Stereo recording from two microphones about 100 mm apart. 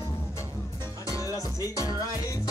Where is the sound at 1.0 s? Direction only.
35° left (ahead or behind).